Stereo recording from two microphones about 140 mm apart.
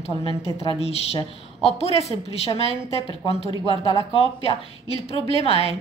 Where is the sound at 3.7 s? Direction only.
35° right (ahead or behind).